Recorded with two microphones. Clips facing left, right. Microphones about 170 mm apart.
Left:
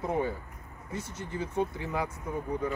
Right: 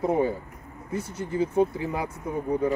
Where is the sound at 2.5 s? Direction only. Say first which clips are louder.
Right 8 dB; 30° right (ahead or behind).